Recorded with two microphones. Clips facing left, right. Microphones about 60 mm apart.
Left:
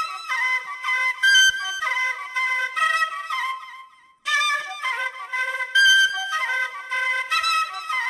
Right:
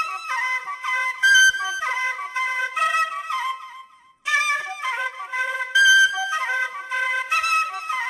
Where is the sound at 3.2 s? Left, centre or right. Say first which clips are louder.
Right 1 dB; right.